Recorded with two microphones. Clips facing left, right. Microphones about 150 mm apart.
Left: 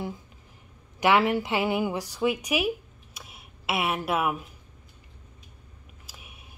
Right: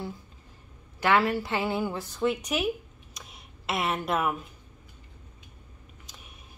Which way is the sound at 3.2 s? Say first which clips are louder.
Left 1 dB; 5° left (ahead or behind).